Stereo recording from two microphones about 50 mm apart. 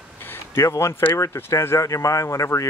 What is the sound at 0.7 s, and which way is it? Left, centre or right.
Speech, left.